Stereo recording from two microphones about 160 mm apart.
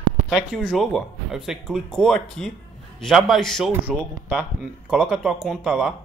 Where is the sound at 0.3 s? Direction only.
Centre (ahead or behind).